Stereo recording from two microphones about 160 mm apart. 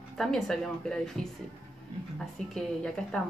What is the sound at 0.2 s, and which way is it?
Speech, 5° left (ahead or behind).